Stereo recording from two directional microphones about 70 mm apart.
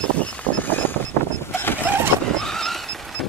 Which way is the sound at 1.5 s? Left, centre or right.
Left.